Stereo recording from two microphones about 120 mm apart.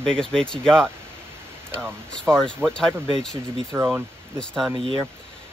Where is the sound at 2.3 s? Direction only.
5° left (ahead or behind).